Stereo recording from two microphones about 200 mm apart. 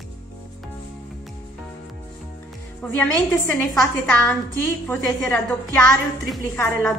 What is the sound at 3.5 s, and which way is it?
A woman's voice, 15° left (ahead or behind).